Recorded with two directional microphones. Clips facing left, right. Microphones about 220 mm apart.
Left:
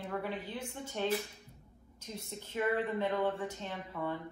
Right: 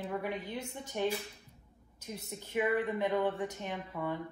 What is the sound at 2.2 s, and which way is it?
Speech, 15° right (ahead or behind).